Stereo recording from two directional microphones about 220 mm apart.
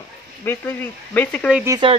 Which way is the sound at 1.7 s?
20° right (ahead or behind).